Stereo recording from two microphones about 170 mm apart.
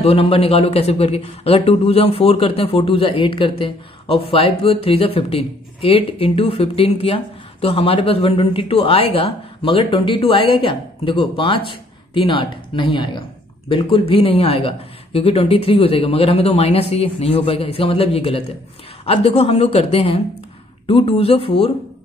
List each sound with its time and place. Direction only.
0.0 s speech: 35° left (ahead or behind)